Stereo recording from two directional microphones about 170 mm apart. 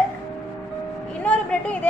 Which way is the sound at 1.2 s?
10° left (ahead or behind).